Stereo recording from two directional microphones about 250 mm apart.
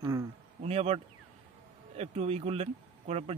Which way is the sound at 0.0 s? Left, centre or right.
Centre.